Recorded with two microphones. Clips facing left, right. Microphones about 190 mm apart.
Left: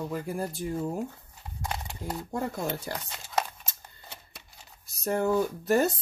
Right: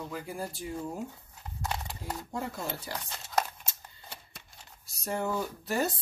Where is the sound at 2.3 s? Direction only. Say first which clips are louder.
Left 5 dB; 50° left (ahead or behind).